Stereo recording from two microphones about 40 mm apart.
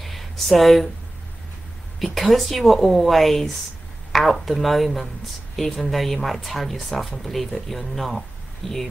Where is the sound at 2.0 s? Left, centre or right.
Centre.